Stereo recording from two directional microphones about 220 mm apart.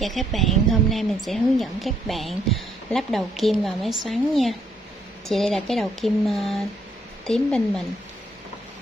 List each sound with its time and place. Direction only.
0.0 s a woman's voice: centre (ahead or behind)